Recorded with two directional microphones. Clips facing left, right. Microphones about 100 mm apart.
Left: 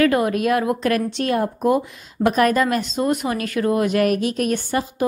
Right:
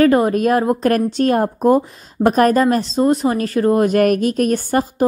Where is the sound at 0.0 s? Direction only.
35° right (ahead or behind).